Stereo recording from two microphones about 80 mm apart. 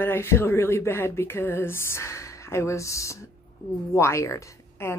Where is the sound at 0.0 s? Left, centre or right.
Left.